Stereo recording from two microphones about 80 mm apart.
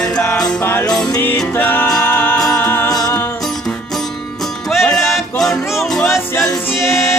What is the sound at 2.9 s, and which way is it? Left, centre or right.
Music, left.